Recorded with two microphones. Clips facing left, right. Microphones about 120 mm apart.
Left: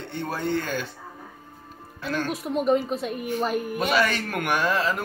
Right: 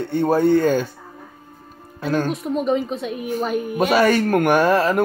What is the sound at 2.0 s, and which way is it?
Speech, 45° right (ahead or behind).